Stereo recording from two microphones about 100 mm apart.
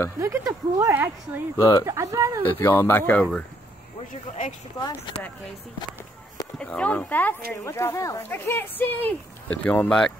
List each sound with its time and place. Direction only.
0.2 s speech: 30° right (ahead or behind)
0.9 s speech: 20° right (ahead or behind)
1.6 s speech: 35° left (ahead or behind)
1.9 s speech: 30° right (ahead or behind)
2.6 s speech: 25° left (ahead or behind)
4.7 s speech: 40° left (ahead or behind)
6.6 s speech: 10° left (ahead or behind)
7.6 s speech: 30° left (ahead or behind)
8.3 s speech: 20° left (ahead or behind)